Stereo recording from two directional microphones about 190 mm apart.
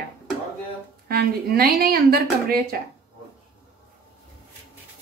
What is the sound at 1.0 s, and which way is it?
A woman's voice, 55° right (ahead or behind).